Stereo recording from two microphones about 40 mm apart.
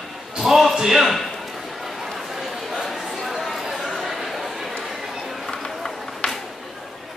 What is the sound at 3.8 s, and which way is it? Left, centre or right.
Chatter, centre.